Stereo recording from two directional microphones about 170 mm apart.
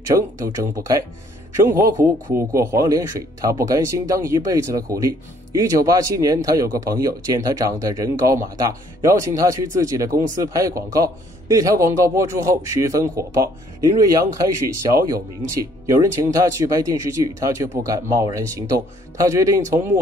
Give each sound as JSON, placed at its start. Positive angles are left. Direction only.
{"t": 0.4, "sound": "speech", "side_deg": -60}
{"t": 0.7, "sound": "speech", "side_deg": -20}